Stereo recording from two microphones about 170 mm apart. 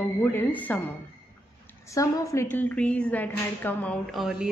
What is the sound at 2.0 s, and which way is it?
A woman's voice, 20° left (ahead or behind).